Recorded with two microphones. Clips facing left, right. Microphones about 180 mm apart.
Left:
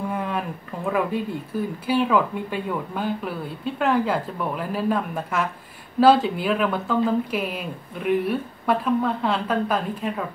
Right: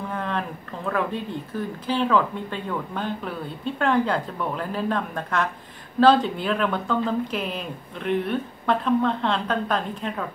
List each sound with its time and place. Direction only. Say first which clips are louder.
0.1 s speech: left 1 dB; 10° left (ahead or behind)